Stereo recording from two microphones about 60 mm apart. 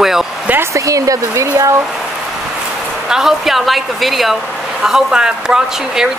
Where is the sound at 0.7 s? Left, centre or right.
Right.